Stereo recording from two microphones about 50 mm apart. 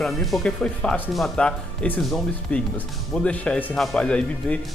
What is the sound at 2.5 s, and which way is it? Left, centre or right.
Speech, left.